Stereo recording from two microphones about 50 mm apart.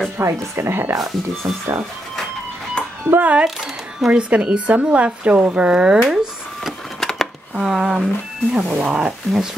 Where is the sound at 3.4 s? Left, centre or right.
Centre.